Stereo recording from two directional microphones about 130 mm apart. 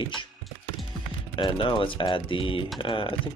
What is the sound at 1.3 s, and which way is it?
Speech, 40° left (ahead or behind).